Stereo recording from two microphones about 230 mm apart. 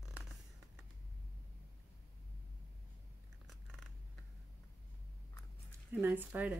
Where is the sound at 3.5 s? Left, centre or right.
Centre.